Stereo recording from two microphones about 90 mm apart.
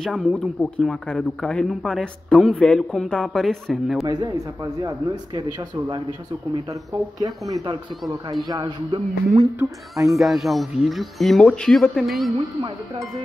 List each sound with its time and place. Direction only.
0.0 s speech: 5° left (ahead or behind)
4.1 s speech: 45° right (ahead or behind)
6.7 s speech: 45° right (ahead or behind)
10.1 s speech: centre (ahead or behind)